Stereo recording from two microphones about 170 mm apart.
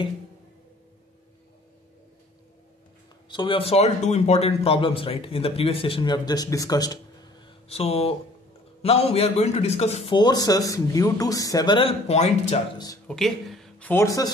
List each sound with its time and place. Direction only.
3.3 s speech: 30° left (ahead or behind)
10.1 s a man's voice: 25° left (ahead or behind)
12.1 s speech: 40° left (ahead or behind)
12.7 s a man's voice: 20° left (ahead or behind)
13.1 s speech: centre (ahead or behind)
14.0 s a man's voice: 20° left (ahead or behind)